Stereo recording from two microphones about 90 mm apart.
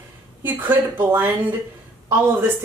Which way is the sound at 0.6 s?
20° right (ahead or behind).